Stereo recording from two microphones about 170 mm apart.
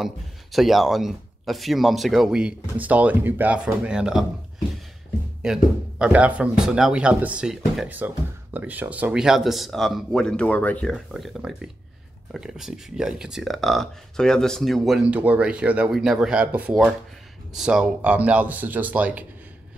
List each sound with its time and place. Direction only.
0.0 s speech: centre (ahead or behind)